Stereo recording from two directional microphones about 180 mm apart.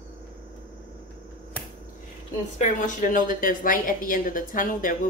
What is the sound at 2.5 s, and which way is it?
A woman's voice, 45° left (ahead or behind).